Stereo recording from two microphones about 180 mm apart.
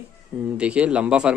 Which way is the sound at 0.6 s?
5° right (ahead or behind).